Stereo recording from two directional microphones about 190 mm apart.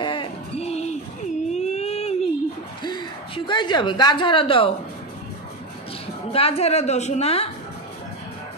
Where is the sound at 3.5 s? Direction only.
25° left (ahead or behind).